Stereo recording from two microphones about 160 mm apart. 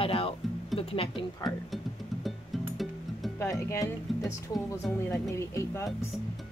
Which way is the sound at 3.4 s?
15° left (ahead or behind).